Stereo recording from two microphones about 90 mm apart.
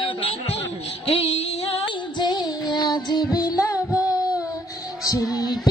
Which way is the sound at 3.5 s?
40° left (ahead or behind).